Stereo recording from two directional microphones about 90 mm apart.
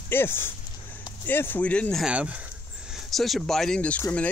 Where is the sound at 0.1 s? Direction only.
25° left (ahead or behind).